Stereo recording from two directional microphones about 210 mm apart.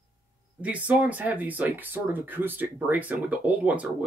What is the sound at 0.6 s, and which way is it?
Speech, 5° right (ahead or behind).